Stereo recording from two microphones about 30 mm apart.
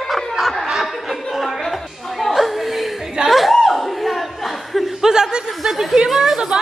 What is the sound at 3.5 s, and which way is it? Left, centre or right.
Chuckle, centre.